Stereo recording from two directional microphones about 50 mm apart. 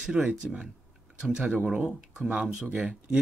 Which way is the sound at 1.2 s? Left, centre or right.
Centre.